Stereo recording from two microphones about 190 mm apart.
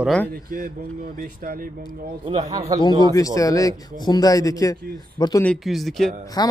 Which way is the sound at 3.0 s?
20° left (ahead or behind).